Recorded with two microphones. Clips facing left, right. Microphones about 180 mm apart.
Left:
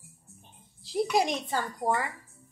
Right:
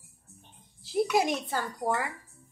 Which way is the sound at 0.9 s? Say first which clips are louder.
Right 1 dB; 5° right (ahead or behind).